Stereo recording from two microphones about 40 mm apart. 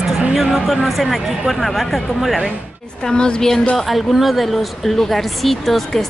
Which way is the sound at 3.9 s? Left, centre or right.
Centre.